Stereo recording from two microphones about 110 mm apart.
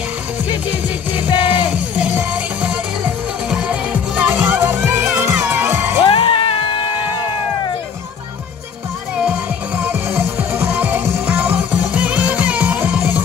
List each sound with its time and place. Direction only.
0.7 s music: 15° right (ahead or behind)
6.0 s music: 50° left (ahead or behind)
9.1 s music: 10° right (ahead or behind)